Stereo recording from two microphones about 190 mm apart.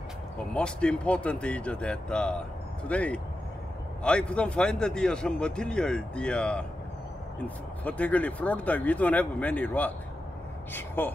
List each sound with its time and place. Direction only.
0.5 s a man's voice: 5° left (ahead or behind)